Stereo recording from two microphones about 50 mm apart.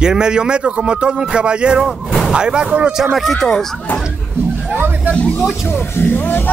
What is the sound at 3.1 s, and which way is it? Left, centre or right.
Speech, centre.